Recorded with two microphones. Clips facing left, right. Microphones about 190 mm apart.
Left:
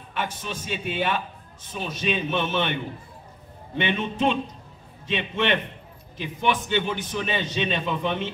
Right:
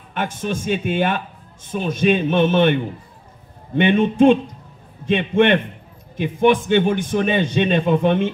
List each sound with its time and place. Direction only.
0.1 s a man's voice: 50° right (ahead or behind)